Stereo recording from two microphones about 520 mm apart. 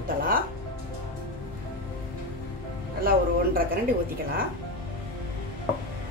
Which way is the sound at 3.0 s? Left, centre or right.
Centre.